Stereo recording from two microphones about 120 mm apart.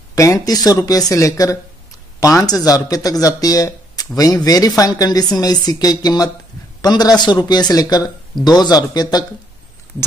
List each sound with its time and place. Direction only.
0.1 s speech: 30° left (ahead or behind)